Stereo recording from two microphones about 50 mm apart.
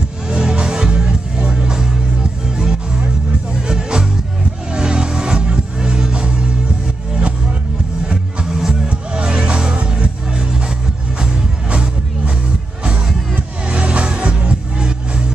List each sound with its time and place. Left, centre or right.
0.3 s music: centre
3.6 s music: centre
8.1 s music: centre
8.8 s music: right
13.7 s music: right